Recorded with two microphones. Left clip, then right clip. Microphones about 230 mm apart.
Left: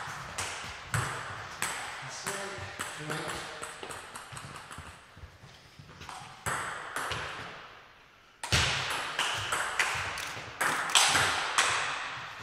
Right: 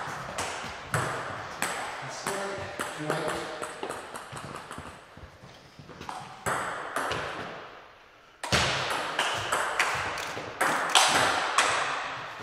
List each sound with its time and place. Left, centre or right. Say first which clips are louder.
0.3 s ping: right 4 dB; centre
5.9 s ping: right 5 dB; centre